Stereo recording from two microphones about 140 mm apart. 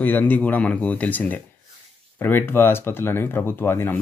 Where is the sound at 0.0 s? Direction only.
15° left (ahead or behind).